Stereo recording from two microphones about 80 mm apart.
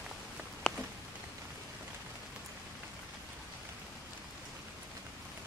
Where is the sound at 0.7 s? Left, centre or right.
Centre.